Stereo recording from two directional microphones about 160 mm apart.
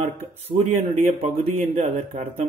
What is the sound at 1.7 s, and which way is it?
Mantra, 50° right (ahead or behind).